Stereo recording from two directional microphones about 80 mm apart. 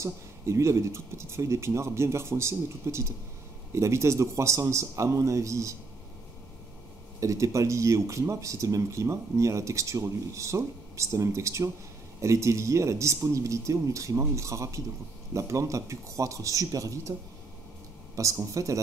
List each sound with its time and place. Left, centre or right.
0.0 s speech: right
7.2 s speech: right
18.1 s speech: right